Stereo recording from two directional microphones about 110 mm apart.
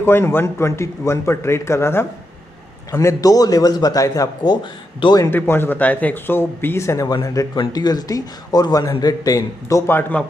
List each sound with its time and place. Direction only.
0.0 s a man's voice: 20° left (ahead or behind)
5.3 s a man's voice: 20° left (ahead or behind)